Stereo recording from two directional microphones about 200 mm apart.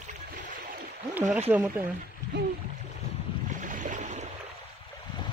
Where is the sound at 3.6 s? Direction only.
40° right (ahead or behind).